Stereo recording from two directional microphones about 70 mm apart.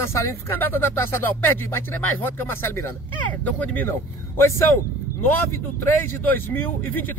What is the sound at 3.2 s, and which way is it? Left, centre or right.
Speech, left.